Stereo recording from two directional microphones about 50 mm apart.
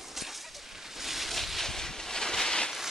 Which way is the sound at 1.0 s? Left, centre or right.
Centre.